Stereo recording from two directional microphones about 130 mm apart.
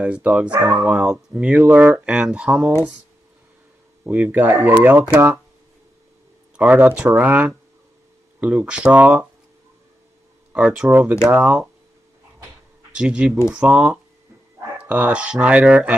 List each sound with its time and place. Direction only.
0.0 s speech: 10° right (ahead or behind)
4.0 s speech: 10° right (ahead or behind)
6.5 s speech: 10° right (ahead or behind)
10.5 s speech: 5° right (ahead or behind)
12.9 s speech: 5° right (ahead or behind)